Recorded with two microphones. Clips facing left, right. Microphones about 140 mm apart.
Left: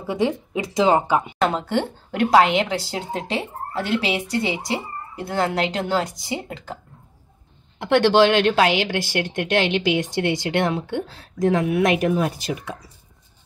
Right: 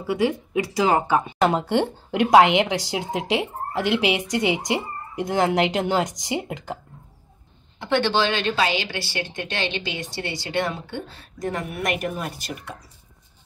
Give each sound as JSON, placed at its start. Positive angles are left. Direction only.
{"t": 0.0, "sound": "speech", "side_deg": 25}
{"t": 1.4, "sound": "speech", "side_deg": -15}
{"t": 7.8, "sound": "a woman's voice", "side_deg": 75}